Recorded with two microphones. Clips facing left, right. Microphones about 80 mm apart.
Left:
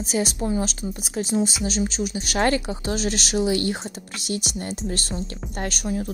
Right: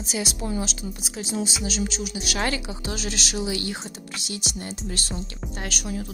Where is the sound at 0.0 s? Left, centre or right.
Left.